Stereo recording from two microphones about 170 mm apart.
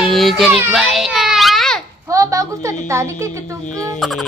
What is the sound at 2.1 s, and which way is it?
A child's voice, 20° right (ahead or behind).